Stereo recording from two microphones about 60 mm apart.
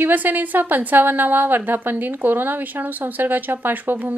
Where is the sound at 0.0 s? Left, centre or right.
Right.